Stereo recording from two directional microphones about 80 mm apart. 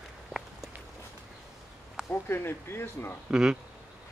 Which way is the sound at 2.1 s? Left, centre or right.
Left.